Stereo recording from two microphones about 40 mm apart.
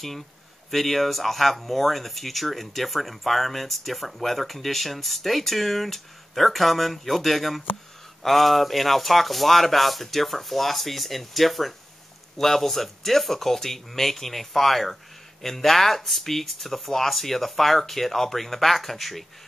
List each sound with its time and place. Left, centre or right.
0.7 s speech: centre